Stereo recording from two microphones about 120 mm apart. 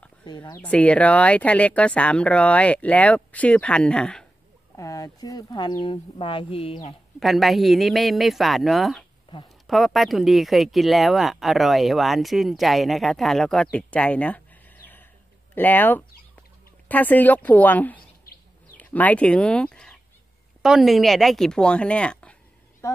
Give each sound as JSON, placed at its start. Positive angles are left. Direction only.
{"t": 0.2, "sound": "speech", "side_deg": 40}
{"t": 0.6, "sound": "speech", "side_deg": 10}
{"t": 4.7, "sound": "speech", "side_deg": 30}
{"t": 7.2, "sound": "speech", "side_deg": 0}
{"t": 9.3, "sound": "a sound", "side_deg": 40}
{"t": 9.7, "sound": "speech", "side_deg": 0}
{"t": 15.5, "sound": "speech", "side_deg": 15}
{"t": 22.8, "sound": "speech", "side_deg": 25}